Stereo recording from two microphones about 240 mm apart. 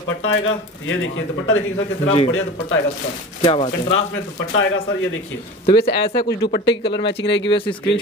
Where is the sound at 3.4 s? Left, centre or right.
Left.